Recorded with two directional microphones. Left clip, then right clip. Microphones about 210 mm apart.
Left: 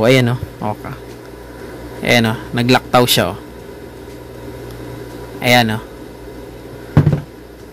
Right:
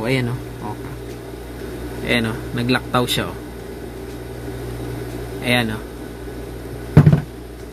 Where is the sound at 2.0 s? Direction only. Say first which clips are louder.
Left 7 dB; 50° left (ahead or behind).